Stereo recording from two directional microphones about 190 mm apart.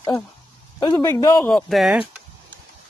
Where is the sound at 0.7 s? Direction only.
20° left (ahead or behind).